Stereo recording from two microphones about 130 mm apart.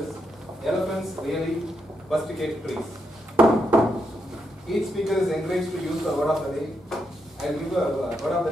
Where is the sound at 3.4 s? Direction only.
10° right (ahead or behind).